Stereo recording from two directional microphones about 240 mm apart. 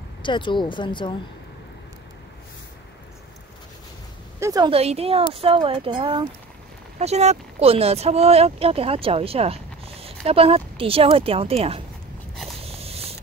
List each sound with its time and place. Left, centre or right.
0.2 s speech: centre
4.4 s speech: centre
12.6 s a sound: right